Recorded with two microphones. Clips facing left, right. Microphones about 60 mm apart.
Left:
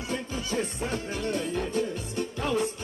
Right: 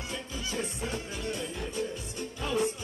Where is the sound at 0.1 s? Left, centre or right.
Left.